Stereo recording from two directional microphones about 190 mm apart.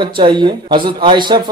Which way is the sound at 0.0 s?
25° right (ahead or behind).